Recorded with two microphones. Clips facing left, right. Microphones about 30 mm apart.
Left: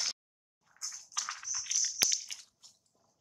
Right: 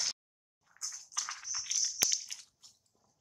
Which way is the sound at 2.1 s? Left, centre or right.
Centre.